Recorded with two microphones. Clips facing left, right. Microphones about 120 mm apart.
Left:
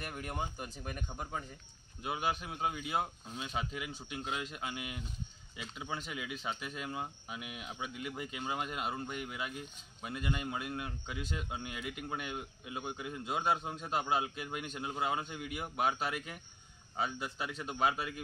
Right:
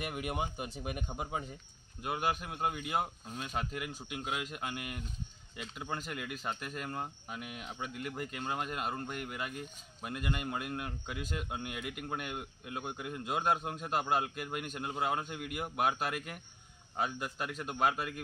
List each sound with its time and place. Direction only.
0.0 s speech: 15° right (ahead or behind)
2.0 s a man's voice: centre (ahead or behind)